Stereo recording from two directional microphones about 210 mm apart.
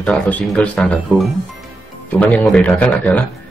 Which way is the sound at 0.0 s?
5° left (ahead or behind).